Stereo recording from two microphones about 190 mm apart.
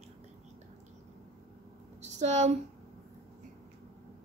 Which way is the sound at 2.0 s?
35° right (ahead or behind).